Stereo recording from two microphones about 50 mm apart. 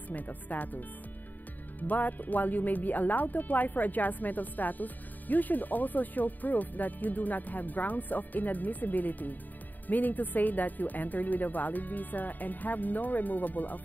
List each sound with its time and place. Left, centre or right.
0.1 s speech: left